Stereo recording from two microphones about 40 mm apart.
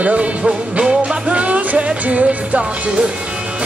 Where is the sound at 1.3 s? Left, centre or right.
Right.